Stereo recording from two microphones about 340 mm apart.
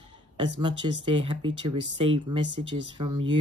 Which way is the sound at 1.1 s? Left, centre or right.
Centre.